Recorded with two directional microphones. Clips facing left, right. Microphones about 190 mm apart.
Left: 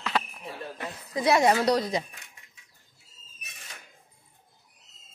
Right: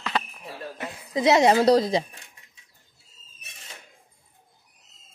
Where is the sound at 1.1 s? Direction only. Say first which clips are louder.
Right 4 dB; 20° right (ahead or behind).